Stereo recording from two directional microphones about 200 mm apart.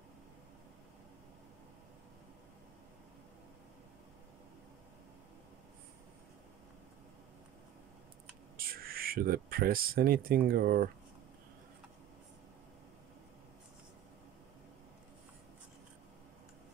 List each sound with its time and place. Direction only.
8.5 s speech: 50° right (ahead or behind)